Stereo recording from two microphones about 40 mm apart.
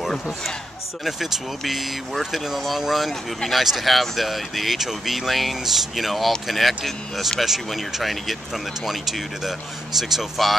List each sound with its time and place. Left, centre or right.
1.0 s speech: centre